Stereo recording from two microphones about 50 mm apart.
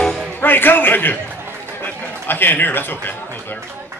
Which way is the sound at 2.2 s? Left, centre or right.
Left.